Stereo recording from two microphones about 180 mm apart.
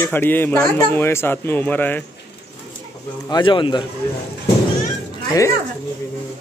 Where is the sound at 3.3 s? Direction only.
25° left (ahead or behind).